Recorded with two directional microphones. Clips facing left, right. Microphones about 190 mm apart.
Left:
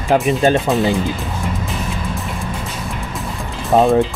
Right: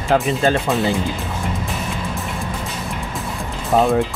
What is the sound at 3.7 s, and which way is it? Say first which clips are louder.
Speech: left 3 dB; 25° left (ahead or behind).